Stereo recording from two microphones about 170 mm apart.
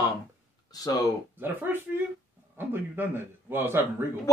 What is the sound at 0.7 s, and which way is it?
Speech, 20° left (ahead or behind).